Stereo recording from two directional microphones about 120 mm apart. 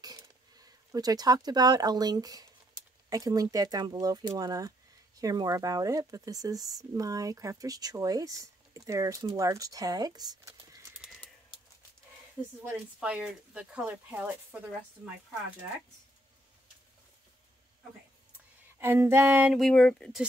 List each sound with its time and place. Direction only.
0.0 s speech: 35° right (ahead or behind)
12.6 s speech: 10° right (ahead or behind)
18.8 s speech: 20° right (ahead or behind)
19.5 s speech: 5° left (ahead or behind)